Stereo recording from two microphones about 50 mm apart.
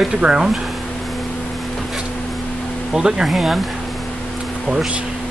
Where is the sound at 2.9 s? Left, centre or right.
Centre.